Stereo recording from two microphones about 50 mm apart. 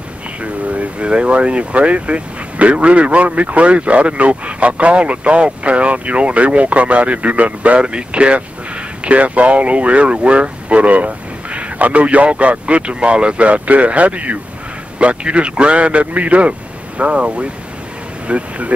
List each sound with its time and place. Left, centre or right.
0.4 s speech: right